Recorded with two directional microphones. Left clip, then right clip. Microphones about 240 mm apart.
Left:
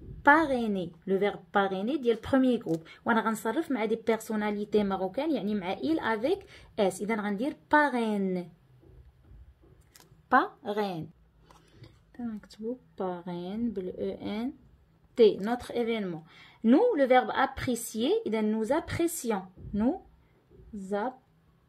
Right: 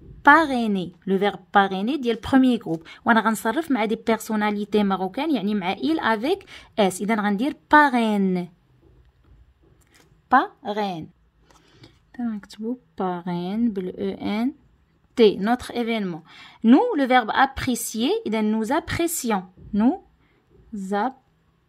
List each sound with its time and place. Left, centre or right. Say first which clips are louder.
0.2 s a woman's voice: right 7 dB; right
10.2 s a woman's voice: right 6 dB; right
12.1 s a woman's voice: right 9 dB; right